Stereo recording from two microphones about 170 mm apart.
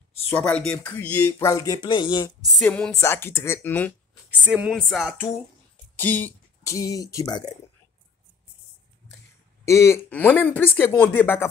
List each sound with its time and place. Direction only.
0.3 s speech: 10° left (ahead or behind); by 2.3 s 25° left (ahead or behind)
2.6 s speech: 5° left (ahead or behind)
4.5 s speech: 10° right (ahead or behind)
4.7 s a sound: centre (ahead or behind)
5.9 s speech: 10° left (ahead or behind)
9.7 s speech: 15° left (ahead or behind)